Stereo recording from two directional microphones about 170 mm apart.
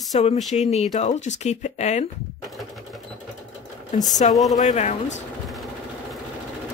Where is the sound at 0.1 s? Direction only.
40° left (ahead or behind).